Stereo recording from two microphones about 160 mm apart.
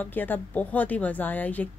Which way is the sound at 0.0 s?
10° left (ahead or behind).